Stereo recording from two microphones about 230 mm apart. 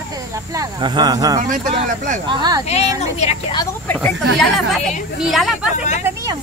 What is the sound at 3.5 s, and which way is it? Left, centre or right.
Speech, centre.